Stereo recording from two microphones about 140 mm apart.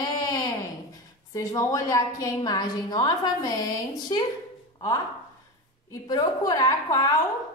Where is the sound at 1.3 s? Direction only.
25° left (ahead or behind).